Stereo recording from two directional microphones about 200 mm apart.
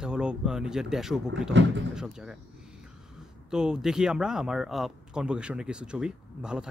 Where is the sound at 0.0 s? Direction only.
5° right (ahead or behind).